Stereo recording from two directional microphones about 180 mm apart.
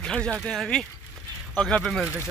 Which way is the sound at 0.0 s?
5° left (ahead or behind).